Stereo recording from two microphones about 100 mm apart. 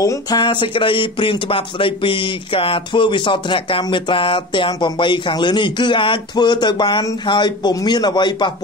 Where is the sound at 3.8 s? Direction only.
55° left (ahead or behind).